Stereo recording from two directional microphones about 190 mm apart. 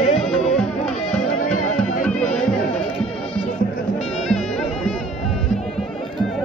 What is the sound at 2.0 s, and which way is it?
Music, 5° left (ahead or behind).